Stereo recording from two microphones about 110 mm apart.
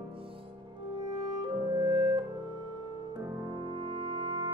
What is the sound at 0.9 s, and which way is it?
Clarinet, 40° right (ahead or behind).